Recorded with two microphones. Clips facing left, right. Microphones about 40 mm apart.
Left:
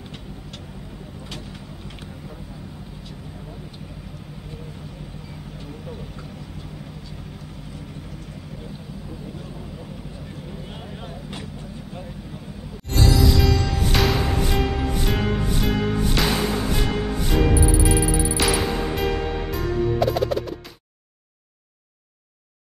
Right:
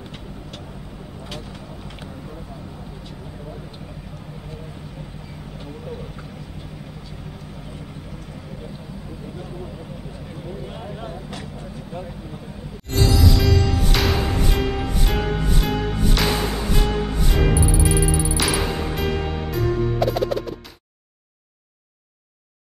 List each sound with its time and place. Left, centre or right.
10.7 s vehicle: centre
12.9 s music: centre